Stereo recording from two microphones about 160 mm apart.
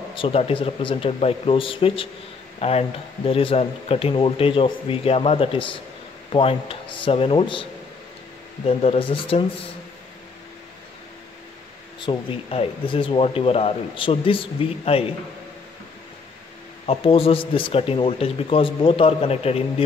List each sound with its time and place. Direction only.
0.1 s speech: 35° left (ahead or behind)
8.6 s speech: 40° left (ahead or behind)
12.0 s speech: 30° left (ahead or behind)
16.8 s speech: 35° left (ahead or behind)